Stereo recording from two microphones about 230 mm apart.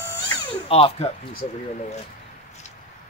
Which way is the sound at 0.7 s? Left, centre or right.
Left.